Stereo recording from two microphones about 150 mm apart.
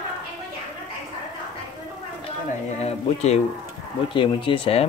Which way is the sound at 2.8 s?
45° left (ahead or behind).